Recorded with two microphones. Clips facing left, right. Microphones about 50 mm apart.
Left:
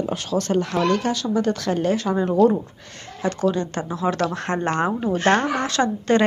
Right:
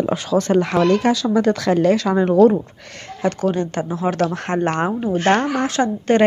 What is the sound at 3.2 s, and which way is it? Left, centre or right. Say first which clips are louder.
Speech: right 2 dB; right.